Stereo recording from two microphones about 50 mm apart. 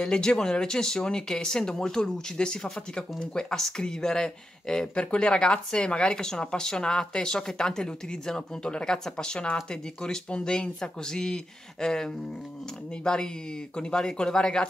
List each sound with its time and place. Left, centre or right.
0.0 s speech: centre